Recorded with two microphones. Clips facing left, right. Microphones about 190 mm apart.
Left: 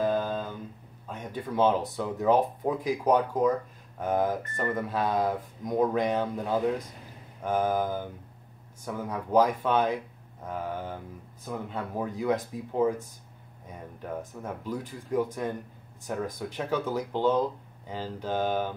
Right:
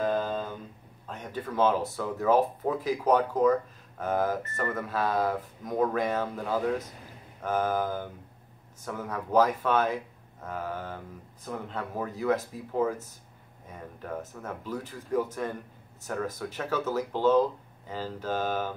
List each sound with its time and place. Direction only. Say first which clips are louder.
0.0 s a sound: left 1 dB; 5° left (ahead or behind)
1.0 s speech: left 1 dB; 15° left (ahead or behind)
14.3 s speech: left 1 dB; 15° left (ahead or behind)